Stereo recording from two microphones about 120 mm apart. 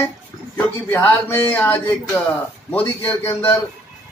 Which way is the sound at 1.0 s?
15° left (ahead or behind).